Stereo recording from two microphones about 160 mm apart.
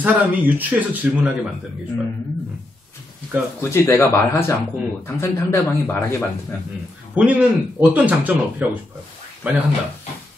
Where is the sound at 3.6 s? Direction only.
15° left (ahead or behind).